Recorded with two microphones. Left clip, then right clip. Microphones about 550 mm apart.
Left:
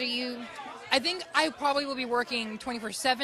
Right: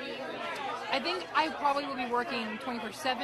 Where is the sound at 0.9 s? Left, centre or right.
Left.